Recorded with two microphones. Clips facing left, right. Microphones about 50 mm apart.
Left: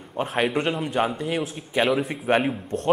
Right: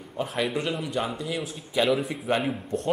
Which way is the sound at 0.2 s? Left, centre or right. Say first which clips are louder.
Left 4 dB; left.